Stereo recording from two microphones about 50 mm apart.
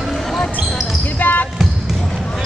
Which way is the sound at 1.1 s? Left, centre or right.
Left.